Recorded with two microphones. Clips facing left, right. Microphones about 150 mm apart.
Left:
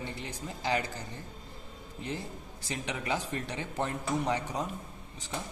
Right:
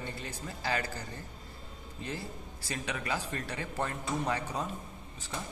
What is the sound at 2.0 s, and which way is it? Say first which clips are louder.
A man's voice: left 2 dB; 20° left (ahead or behind).